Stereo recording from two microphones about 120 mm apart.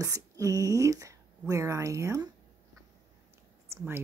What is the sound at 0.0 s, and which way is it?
Speech, 30° right (ahead or behind).